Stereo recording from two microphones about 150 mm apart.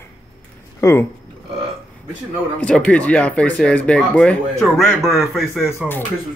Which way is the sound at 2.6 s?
5° left (ahead or behind).